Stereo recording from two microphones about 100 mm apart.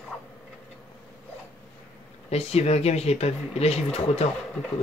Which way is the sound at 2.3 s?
90° left.